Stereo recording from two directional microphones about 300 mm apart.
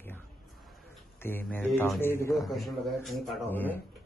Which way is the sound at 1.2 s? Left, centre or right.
Centre.